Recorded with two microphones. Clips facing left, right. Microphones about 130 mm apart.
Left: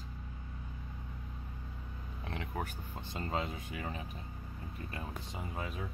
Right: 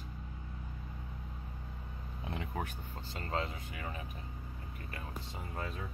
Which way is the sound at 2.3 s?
Centre (ahead or behind).